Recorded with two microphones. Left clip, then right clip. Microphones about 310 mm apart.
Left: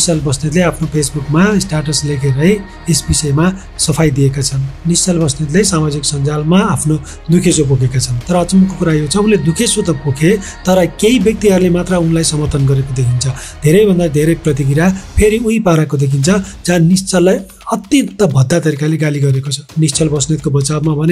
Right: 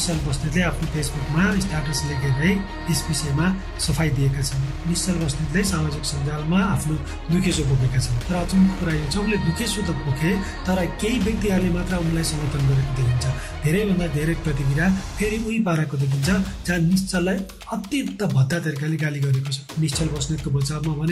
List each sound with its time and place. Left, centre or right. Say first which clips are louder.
0.0 s speech: left 12 dB; centre